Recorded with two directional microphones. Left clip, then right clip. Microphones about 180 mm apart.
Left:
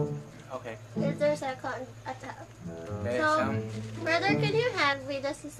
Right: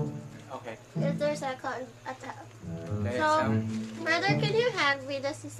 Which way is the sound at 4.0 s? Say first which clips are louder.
Left 1 dB; 10° right (ahead or behind).